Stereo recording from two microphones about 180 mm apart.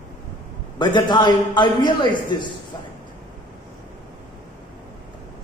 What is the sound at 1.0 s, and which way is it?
A man's voice, 25° left (ahead or behind).